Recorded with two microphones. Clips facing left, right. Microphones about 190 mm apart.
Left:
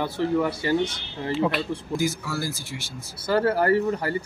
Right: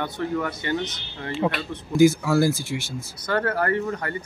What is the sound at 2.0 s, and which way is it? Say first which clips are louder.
Speech: right 14 dB; 55° right (ahead or behind).